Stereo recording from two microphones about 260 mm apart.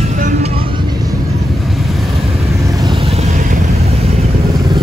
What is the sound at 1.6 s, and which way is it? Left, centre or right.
Vehicle, centre.